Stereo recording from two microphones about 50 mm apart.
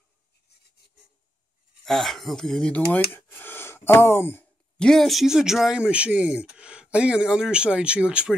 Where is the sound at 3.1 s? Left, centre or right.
Left.